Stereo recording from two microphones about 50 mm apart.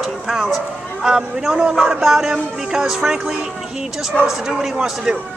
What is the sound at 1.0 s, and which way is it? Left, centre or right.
Speech, centre.